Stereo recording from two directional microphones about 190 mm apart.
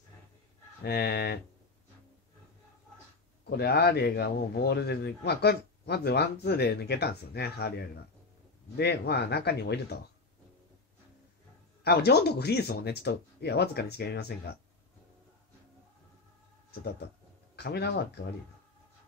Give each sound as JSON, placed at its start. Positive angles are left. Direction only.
{"t": 0.8, "sound": "speech", "side_deg": 55}
{"t": 3.4, "sound": "speech", "side_deg": 60}
{"t": 11.8, "sound": "speech", "side_deg": 60}
{"t": 17.6, "sound": "speech", "side_deg": 60}